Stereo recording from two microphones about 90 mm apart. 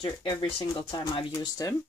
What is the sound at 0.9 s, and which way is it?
Speech, 65° left (ahead or behind).